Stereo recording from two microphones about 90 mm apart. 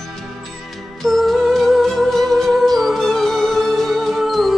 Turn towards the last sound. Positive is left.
turn(degrees=0)  # may be behind; listen again after turning